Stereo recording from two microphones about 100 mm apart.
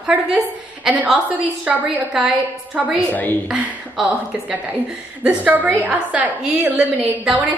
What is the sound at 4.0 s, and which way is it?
Speech, 5° right (ahead or behind).